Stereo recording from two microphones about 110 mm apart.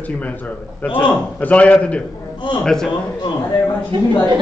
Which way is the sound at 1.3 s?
15° left (ahead or behind).